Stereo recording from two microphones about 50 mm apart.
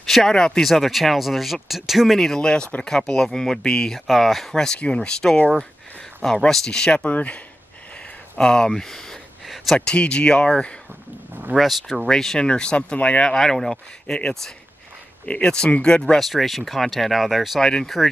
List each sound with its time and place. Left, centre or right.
0.0 s speech: centre
0.7 s speech: centre
2.1 s speech: centre
4.1 s speech: centre
4.7 s speech: left
7.1 s speech: left
8.4 s a sound: centre
9.8 s speech: left
11.5 s speech: centre
12.4 s speech: centre
13.3 s speech: centre
16.2 s speech: centre
17.6 s speech: centre